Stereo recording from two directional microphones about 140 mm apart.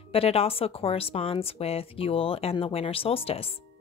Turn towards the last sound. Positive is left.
turn(degrees=45)  # may be behind; listen again after turning